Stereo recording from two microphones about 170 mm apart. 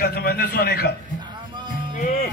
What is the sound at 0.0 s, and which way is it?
Speech, 65° left (ahead or behind).